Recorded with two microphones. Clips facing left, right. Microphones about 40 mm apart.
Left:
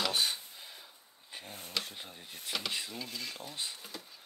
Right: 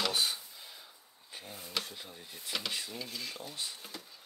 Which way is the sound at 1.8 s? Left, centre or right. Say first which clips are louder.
Left 1 dB; left.